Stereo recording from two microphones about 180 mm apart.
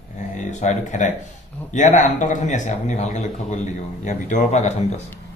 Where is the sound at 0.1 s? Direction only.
40° left (ahead or behind).